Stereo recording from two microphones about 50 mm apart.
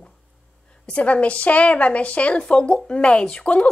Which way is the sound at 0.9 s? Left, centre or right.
Left.